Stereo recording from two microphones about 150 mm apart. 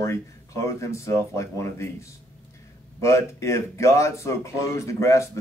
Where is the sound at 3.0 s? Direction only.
20° left (ahead or behind).